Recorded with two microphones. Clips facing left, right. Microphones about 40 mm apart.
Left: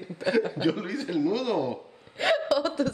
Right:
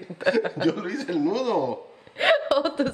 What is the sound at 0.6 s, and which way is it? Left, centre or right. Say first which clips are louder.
A man's voice: right 2 dB; centre.